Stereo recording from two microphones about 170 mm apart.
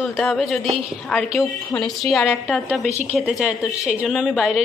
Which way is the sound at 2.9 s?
40° right (ahead or behind).